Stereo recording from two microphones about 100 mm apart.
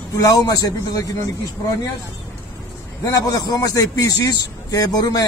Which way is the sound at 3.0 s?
40° left (ahead or behind).